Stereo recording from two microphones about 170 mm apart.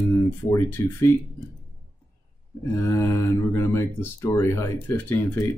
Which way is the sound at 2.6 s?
15° left (ahead or behind).